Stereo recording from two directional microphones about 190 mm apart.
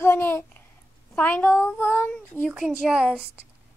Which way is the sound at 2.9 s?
5° right (ahead or behind).